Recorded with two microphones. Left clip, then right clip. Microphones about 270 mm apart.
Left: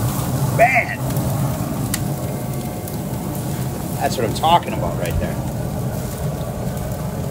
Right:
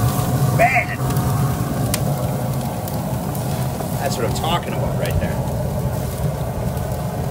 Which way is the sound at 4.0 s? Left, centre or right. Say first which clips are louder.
Left 4 dB; centre.